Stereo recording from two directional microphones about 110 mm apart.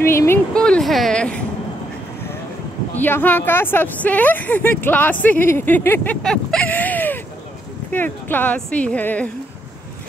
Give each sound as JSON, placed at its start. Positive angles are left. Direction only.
{"t": 0.0, "sound": "speech", "side_deg": 25}
{"t": 0.6, "sound": "speech", "side_deg": 5}
{"t": 3.0, "sound": "speech", "side_deg": 15}